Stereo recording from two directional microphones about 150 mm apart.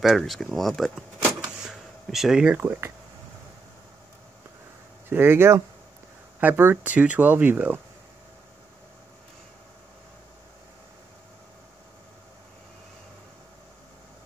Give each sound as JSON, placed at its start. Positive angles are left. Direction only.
{"t": 0.0, "sound": "speech", "side_deg": 0}
{"t": 5.1, "sound": "speech", "side_deg": -15}